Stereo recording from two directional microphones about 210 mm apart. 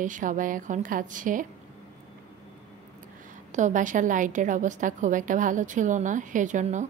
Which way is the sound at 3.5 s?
35° right (ahead or behind).